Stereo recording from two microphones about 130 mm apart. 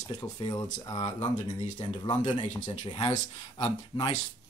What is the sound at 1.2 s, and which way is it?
Speech, 60° left (ahead or behind).